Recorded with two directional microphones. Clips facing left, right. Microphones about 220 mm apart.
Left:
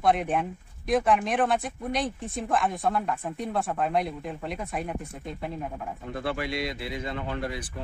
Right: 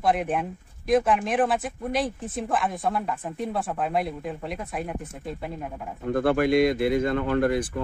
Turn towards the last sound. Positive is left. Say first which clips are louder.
# right 10 dB
turn(degrees=-55)  # may be behind; listen again after turning